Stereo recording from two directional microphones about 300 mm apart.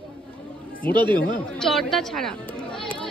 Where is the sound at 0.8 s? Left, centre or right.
Centre.